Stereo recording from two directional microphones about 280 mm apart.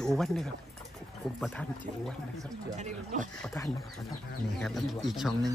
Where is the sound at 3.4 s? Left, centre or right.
Centre.